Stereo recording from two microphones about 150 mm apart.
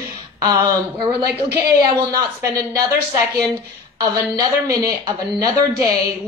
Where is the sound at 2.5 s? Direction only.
25° right (ahead or behind).